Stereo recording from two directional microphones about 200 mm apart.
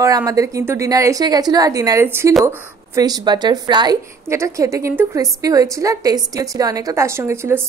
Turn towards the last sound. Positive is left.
turn(degrees=-10)  # may be behind; listen again after turning